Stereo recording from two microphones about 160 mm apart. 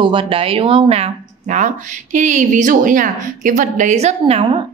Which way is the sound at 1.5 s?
50° right (ahead or behind).